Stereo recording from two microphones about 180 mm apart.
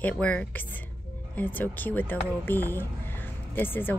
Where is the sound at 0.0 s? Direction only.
5° left (ahead or behind).